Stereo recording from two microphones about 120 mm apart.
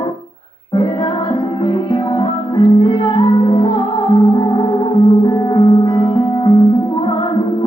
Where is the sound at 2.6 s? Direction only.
40° left (ahead or behind).